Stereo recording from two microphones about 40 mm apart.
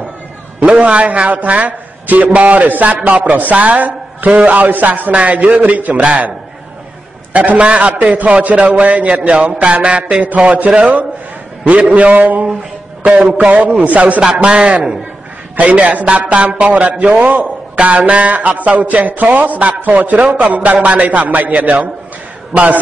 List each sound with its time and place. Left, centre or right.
0.7 s a man's voice: right
7.3 s speech: right
13.2 s a man's voice: right
13.5 s speech: right
14.2 s a man's voice: centre
14.5 s speech: right